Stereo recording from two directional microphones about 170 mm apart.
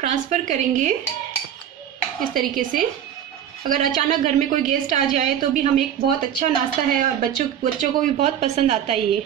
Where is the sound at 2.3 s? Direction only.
55° right (ahead or behind).